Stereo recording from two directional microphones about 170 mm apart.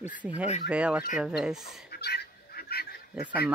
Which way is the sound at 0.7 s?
5° right (ahead or behind).